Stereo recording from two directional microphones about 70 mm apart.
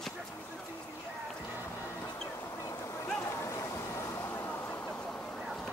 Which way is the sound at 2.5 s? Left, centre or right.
Left.